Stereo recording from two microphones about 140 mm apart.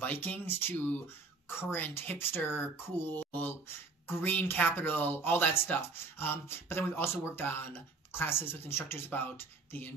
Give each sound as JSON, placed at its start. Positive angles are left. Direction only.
{"t": 0.0, "sound": "speech", "side_deg": 10}